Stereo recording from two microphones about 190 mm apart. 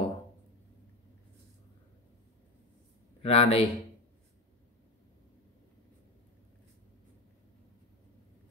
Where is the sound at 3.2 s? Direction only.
30° left (ahead or behind).